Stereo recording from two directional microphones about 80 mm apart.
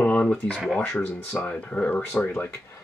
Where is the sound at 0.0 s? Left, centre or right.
Centre.